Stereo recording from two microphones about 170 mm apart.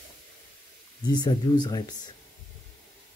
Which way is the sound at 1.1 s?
25° left (ahead or behind).